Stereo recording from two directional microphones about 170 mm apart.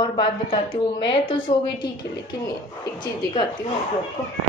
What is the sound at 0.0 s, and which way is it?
A woman's voice, 30° left (ahead or behind).